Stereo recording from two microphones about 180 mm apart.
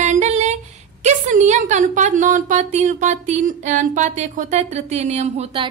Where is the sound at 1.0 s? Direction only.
40° right (ahead or behind).